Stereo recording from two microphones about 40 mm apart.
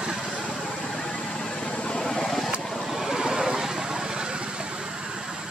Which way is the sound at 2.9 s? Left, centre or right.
Centre.